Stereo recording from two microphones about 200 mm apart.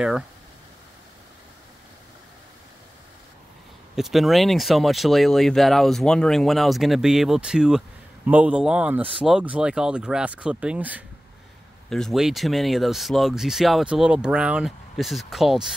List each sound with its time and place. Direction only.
3.9 s speech: centre (ahead or behind)